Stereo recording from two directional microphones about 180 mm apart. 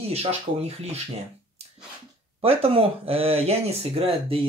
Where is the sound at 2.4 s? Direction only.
35° right (ahead or behind).